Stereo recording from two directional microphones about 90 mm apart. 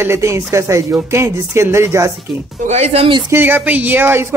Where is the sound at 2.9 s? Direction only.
90° right.